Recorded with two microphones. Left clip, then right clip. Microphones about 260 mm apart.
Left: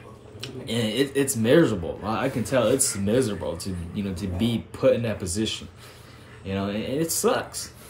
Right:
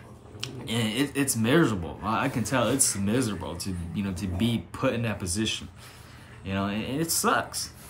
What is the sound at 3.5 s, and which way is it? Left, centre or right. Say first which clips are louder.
Speech: left 2 dB; right.